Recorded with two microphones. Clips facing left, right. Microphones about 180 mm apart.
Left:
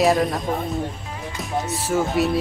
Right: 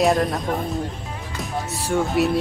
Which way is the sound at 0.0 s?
Centre (ahead or behind).